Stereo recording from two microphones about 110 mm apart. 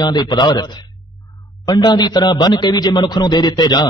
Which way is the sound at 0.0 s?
40° left (ahead or behind).